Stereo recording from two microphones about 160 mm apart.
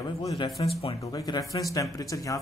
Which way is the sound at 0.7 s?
35° left (ahead or behind).